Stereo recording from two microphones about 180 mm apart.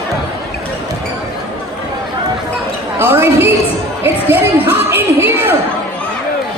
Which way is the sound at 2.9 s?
15° right (ahead or behind).